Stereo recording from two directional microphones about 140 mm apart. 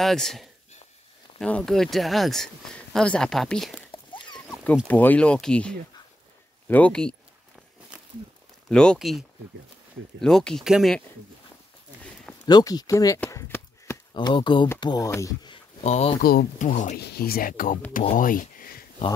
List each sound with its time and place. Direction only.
0.0 s speech: 5° left (ahead or behind)
4.3 s a sound: centre (ahead or behind)
4.8 s speech: 10° left (ahead or behind)
8.6 s speech: 5° left (ahead or behind)
10.2 s speech: 5° left (ahead or behind)
12.4 s speech: 30° left (ahead or behind)
13.3 s chop: 20° left (ahead or behind)
14.1 s speech: 35° left (ahead or behind)
15.8 s speech: 50° left (ahead or behind)
16.2 s speech: 90° left
18.1 s a sound: 75° left (ahead or behind); by 18.9 s 90° left